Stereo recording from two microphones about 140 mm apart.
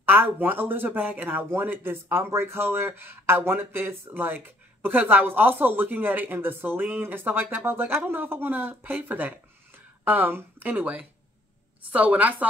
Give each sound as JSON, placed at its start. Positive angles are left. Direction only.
{"t": 0.0, "sound": "speech", "side_deg": -15}